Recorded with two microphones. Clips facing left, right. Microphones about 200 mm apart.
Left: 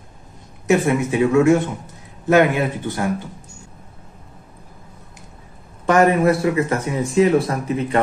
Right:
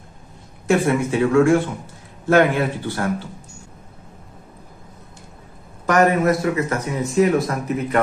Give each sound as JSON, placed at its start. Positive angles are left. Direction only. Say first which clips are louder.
{"t": 0.7, "sound": "speech", "louder": "left 1 dB", "side_deg": 15}
{"t": 5.9, "sound": "speech", "louder": "left 2 dB", "side_deg": 30}